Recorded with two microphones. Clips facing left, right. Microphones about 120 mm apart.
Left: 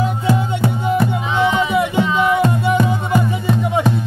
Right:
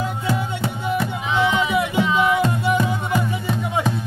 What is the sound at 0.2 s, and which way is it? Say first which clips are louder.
Music: left 6 dB; 25° left (ahead or behind).